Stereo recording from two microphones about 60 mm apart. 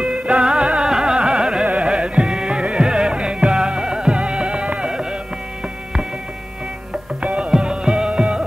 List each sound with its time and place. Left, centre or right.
0.0 s carnatic music: centre
1.7 s music: centre
6.9 s music: centre